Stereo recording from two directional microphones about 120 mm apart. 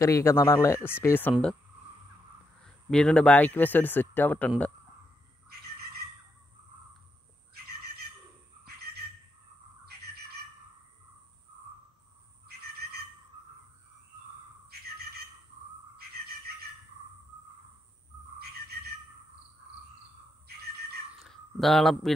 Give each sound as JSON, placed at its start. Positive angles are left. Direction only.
{"t": 0.0, "sound": "speech", "side_deg": 25}
{"t": 2.6, "sound": "speech", "side_deg": 5}
{"t": 21.2, "sound": "a sound", "side_deg": 0}